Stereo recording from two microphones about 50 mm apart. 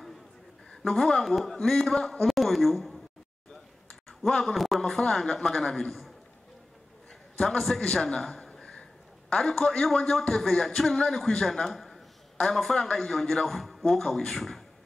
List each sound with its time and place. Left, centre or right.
0.8 s a man's voice: centre
4.3 s a man's voice: centre
7.5 s a man's voice: centre
7.8 s a man's voice: centre
8.2 s a sound: centre
9.3 s a man's voice: centre